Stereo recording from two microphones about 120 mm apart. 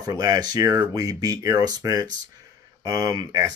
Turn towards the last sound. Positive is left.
turn(degrees=-30)  # may be behind; listen again after turning